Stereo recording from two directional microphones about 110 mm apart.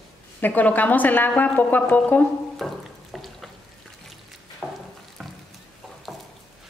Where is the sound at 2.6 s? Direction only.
Centre (ahead or behind).